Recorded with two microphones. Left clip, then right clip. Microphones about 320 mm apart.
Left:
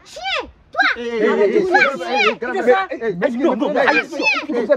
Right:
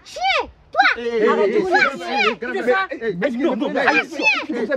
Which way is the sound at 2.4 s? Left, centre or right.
Centre.